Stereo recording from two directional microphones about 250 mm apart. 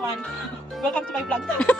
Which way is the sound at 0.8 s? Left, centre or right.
Centre.